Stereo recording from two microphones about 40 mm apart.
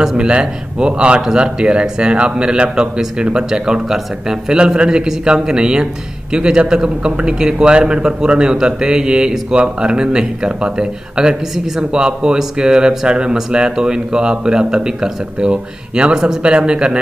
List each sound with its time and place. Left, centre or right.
0.0 s a man's voice: right